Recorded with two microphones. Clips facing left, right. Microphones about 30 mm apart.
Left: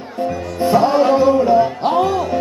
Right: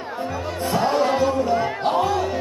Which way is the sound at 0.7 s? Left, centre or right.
Centre.